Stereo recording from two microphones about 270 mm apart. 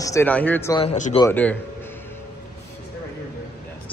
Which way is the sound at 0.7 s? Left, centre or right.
Left.